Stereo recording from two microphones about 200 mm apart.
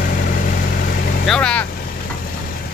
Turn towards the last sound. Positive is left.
turn(degrees=5)  # may be behind; listen again after turning